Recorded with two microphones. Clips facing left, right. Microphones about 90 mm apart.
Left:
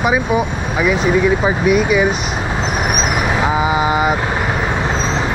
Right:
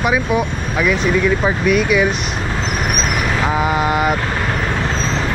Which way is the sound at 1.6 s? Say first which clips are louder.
Left 1 dB; 5° left (ahead or behind).